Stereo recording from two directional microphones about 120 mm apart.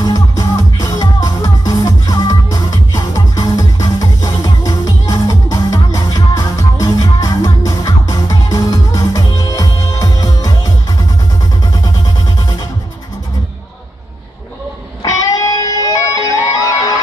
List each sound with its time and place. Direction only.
0.0 s music: 30° left (ahead or behind)
15.0 s music: 30° left (ahead or behind)